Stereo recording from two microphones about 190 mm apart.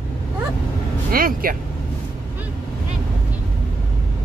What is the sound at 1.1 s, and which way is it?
Speech, 50° right (ahead or behind).